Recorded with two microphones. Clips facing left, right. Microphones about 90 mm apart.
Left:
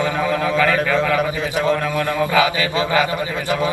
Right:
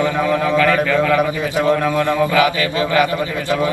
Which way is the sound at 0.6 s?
15° left (ahead or behind).